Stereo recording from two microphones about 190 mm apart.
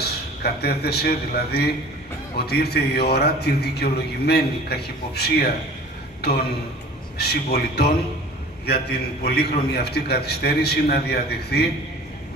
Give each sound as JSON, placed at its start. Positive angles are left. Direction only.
{"t": 0.0, "sound": "a man's voice", "side_deg": 55}
{"t": 7.2, "sound": "a man's voice", "side_deg": 60}